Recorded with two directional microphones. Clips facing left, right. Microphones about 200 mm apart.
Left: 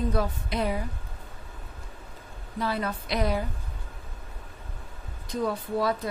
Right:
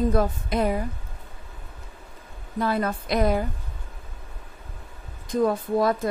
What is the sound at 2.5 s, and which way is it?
Speech, 50° right (ahead or behind).